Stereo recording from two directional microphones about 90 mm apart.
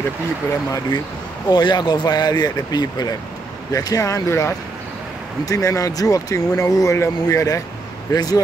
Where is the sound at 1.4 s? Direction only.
50° left (ahead or behind).